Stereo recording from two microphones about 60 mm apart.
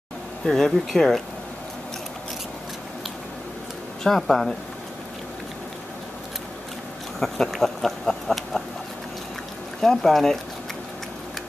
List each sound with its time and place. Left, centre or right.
0.5 s speech: centre
4.0 s speech: centre
7.2 s speech: centre
9.8 s speech: centre